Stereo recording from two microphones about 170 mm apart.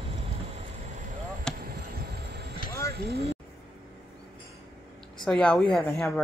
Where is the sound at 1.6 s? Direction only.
65° right (ahead or behind).